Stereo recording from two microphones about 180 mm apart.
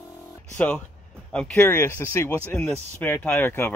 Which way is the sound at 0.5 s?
10° left (ahead or behind).